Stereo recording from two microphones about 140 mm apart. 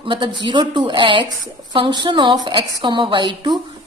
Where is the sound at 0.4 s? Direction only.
35° right (ahead or behind).